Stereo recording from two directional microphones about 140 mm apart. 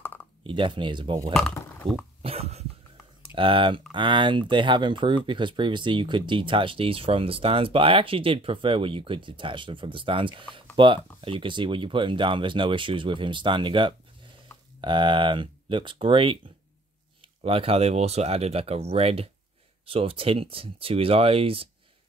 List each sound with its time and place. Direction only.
0.0 s a sound: 15° left (ahead or behind)
0.4 s speech: 35° right (ahead or behind)
1.3 s speech: centre (ahead or behind)
2.2 s a sound: 45° right (ahead or behind)
3.3 s speech: 40° right (ahead or behind)
17.4 s speech: 45° right (ahead or behind)